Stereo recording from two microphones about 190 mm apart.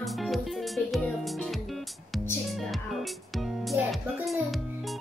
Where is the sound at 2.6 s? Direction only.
Centre (ahead or behind).